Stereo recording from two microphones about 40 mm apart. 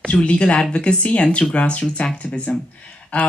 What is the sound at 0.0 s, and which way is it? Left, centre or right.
Speech, left.